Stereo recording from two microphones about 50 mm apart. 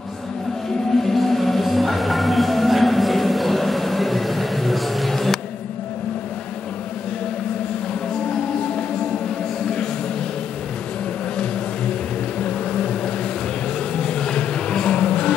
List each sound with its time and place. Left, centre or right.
1.1 s music: centre
12.4 s vehicle: centre
13.9 s music: centre